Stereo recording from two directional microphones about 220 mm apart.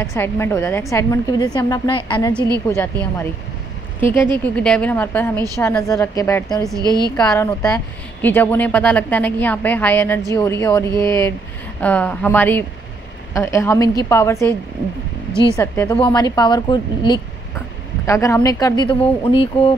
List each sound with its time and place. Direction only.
0.0 s a woman's voice: 10° left (ahead or behind)
2.7 s a woman's voice: 10° left (ahead or behind)
6.6 s a woman's voice: 15° right (ahead or behind)
7.2 s a woman's voice: 10° left (ahead or behind)
15.5 s a woman's voice: 10° left (ahead or behind)